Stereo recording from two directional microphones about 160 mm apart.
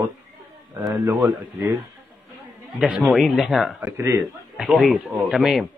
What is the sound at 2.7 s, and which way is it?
Speech, 5° right (ahead or behind).